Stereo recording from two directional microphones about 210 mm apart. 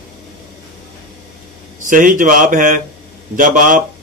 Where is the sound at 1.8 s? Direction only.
40° right (ahead or behind).